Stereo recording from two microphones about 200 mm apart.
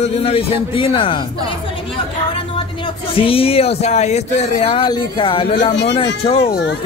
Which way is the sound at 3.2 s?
25° left (ahead or behind).